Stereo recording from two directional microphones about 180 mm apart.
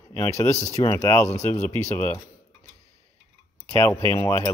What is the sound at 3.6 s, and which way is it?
Speech, 10° left (ahead or behind).